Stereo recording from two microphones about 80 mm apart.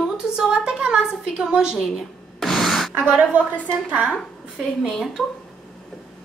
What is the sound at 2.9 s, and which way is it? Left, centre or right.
Speech, centre.